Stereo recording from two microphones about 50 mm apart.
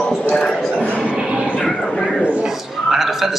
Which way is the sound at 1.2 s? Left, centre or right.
Centre.